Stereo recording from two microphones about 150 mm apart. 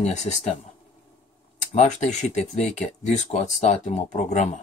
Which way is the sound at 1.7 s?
50° left (ahead or behind).